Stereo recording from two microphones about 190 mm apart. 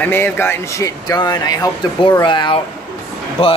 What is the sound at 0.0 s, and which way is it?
Speech, 10° left (ahead or behind).